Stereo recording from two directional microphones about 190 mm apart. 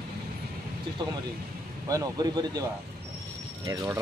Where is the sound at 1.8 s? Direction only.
20° right (ahead or behind).